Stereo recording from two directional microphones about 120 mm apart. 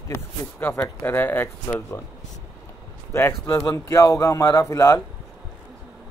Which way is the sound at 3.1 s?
20° left (ahead or behind).